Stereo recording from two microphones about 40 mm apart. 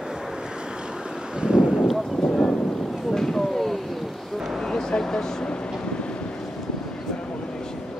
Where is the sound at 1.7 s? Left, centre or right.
Centre.